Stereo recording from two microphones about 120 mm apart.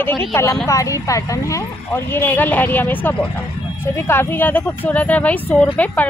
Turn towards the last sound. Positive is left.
turn(degrees=10)  # may be behind; listen again after turning